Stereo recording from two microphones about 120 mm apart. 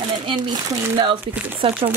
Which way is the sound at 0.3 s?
40° right (ahead or behind).